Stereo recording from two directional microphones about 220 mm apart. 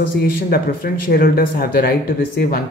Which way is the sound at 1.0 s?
40° left (ahead or behind).